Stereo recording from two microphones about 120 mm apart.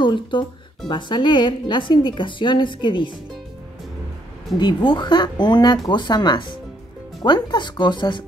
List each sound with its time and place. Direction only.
0.0 s speech: 40° left (ahead or behind)
4.6 s speech: 40° left (ahead or behind)